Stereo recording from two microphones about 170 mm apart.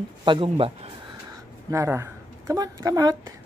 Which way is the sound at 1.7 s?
15° right (ahead or behind).